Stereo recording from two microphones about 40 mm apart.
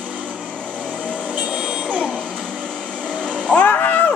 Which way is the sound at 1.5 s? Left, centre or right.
Centre.